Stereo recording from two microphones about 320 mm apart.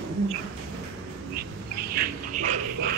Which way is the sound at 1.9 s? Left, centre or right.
Right.